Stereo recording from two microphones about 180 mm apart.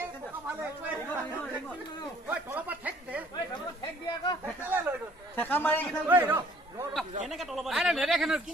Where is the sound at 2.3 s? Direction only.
10° right (ahead or behind).